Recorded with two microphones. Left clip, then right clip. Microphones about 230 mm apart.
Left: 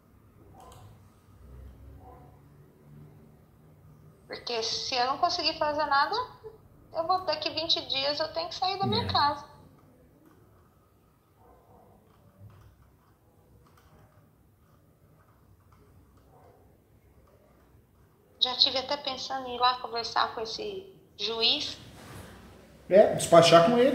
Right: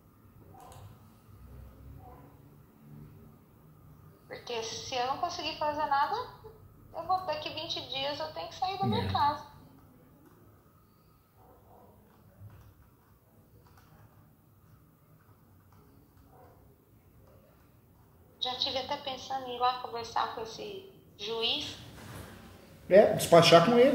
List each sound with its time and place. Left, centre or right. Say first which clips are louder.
4.3 s a woman's voice: left 5 dB; left
18.4 s a woman's voice: left 7 dB; left
23.1 s speech: left 2 dB; centre